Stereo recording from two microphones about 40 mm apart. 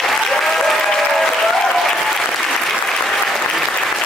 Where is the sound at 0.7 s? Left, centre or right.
Centre.